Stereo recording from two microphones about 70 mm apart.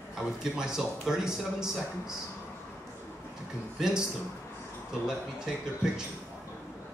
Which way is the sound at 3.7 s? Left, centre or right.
Centre.